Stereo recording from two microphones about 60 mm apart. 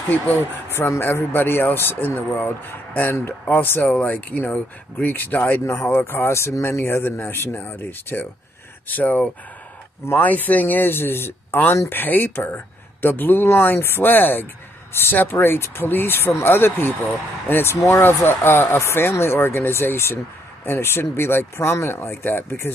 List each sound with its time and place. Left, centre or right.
0.7 s speech: left
3.9 s speech: left
17.7 s speech: left
18.0 s speech: left